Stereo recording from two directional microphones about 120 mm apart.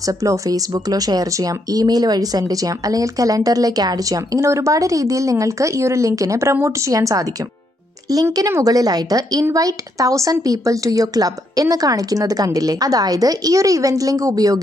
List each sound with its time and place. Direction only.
0.0 s speech: 25° right (ahead or behind)